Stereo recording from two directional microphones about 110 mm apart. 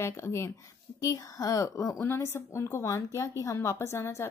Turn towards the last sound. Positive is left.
turn(degrees=25)  # may be behind; listen again after turning